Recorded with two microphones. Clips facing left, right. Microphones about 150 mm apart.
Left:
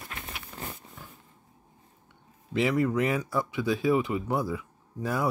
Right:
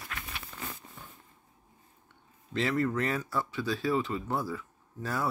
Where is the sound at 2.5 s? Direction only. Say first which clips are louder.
Left 4 dB; 10° left (ahead or behind).